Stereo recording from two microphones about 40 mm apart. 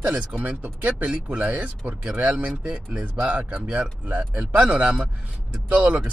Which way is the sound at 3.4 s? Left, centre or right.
Right.